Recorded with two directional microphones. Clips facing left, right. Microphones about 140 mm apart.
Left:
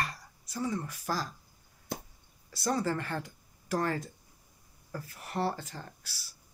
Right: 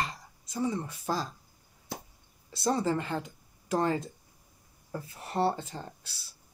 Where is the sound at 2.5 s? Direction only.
25° right (ahead or behind).